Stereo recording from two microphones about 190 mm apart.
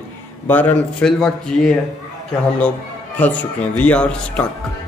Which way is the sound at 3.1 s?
10° left (ahead or behind).